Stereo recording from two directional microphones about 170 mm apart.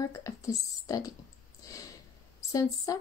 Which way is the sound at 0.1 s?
20° left (ahead or behind).